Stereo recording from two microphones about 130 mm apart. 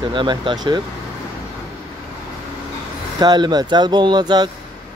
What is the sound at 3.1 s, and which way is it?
Speech, 35° right (ahead or behind).